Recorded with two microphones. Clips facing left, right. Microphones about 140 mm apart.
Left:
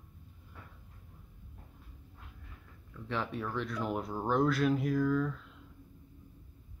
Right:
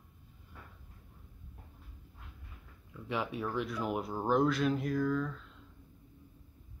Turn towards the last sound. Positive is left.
turn(degrees=5)  # may be behind; listen again after turning